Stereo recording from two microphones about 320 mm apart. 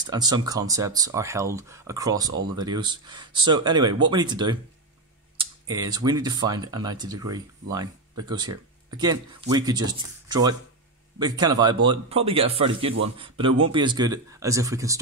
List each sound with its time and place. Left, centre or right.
0.0 s speech: centre